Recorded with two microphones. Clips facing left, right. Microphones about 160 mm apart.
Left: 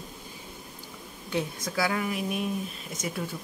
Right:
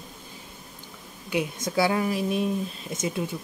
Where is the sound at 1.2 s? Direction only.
15° right (ahead or behind).